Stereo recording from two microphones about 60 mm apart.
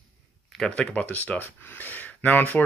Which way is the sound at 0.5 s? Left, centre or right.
Centre.